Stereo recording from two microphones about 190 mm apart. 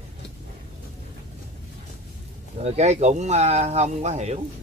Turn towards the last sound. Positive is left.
turn(degrees=-35)  # may be behind; listen again after turning